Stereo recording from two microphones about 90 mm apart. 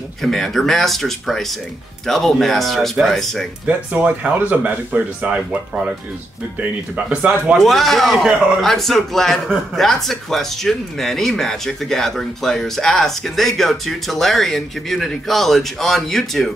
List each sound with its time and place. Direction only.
0.2 s a man's voice: centre (ahead or behind)
3.6 s speech: 15° right (ahead or behind)
7.1 s speech: 10° right (ahead or behind)
7.5 s a man's voice: centre (ahead or behind)